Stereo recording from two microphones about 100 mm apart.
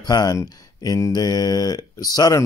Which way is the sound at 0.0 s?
35° left (ahead or behind).